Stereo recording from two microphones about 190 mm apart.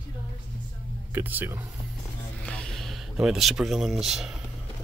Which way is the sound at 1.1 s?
10° right (ahead or behind).